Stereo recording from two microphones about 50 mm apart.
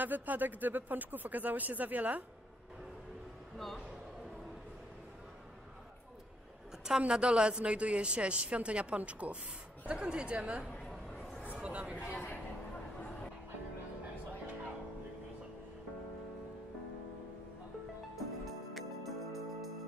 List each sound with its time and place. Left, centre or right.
0.0 s speech: right
3.5 s a man's voice: centre
7.0 s a woman's voice: centre
11.6 s speech: right
12.1 s a man's voice: left
18.1 s music: centre